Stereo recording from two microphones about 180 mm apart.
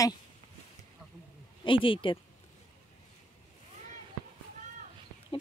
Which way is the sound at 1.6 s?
30° left (ahead or behind).